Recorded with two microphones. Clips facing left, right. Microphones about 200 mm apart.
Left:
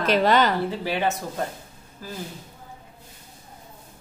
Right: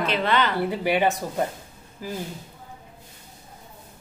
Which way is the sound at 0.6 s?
15° right (ahead or behind).